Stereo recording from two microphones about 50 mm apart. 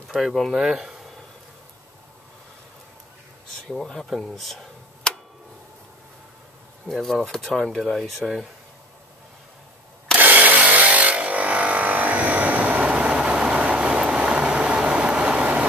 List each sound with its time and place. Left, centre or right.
0.2 s speech: centre
3.7 s speech: centre
6.9 s speech: centre
10.1 s tools: right
12.9 s vehicle: centre